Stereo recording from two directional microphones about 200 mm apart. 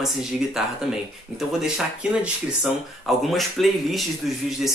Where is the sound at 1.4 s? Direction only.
5° right (ahead or behind).